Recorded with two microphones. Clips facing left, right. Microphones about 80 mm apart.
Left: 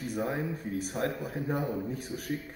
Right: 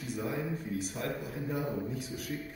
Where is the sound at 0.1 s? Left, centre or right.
Left.